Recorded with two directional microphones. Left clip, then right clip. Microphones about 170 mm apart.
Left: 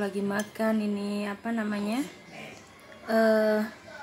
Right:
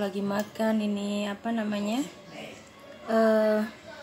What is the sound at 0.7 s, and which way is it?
Speech, 30° left (ahead or behind).